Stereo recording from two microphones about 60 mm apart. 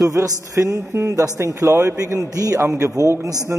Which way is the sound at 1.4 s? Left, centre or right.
Right.